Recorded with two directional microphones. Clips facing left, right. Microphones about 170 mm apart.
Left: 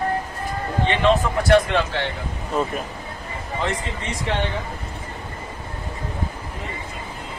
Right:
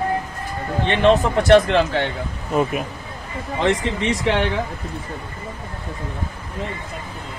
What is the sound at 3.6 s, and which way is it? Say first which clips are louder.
Speech: right 9 dB; 90° right.